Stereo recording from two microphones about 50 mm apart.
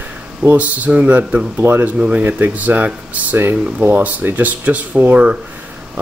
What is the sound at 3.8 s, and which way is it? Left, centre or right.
Speech, right.